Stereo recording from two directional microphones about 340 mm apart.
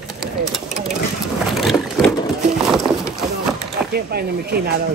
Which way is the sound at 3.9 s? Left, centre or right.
Right.